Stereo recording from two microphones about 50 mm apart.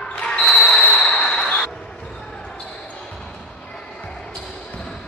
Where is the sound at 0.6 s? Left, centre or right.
Left.